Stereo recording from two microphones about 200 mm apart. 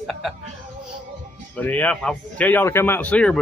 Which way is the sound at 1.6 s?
10° left (ahead or behind).